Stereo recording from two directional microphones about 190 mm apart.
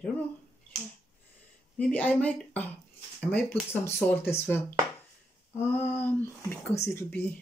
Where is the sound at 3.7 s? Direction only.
10° left (ahead or behind).